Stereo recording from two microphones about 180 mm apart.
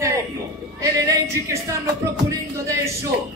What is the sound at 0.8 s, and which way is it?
Music, 15° right (ahead or behind).